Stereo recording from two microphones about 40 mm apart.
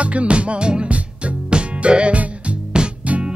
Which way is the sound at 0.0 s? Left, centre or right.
Right.